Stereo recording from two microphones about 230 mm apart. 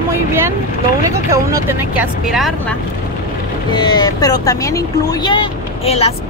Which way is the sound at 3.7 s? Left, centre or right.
Centre.